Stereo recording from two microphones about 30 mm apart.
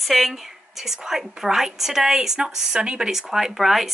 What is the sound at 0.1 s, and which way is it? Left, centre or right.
Speech, centre.